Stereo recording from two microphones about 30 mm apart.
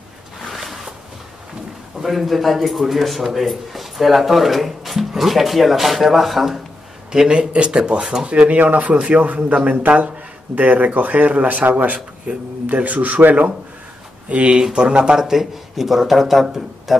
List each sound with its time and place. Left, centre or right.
0.5 s zipper: centre
2.0 s speech: centre
7.1 s speech: right
8.5 s speech: right
8.9 s a man's voice: right
12.3 s a man's voice: right
12.7 s speech: right
14.3 s speech: right
14.6 s speech: right
15.1 s a man's voice: centre
15.7 s speech: centre